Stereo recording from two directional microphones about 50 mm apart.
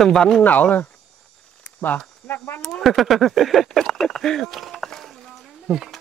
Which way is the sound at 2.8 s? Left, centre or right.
Centre.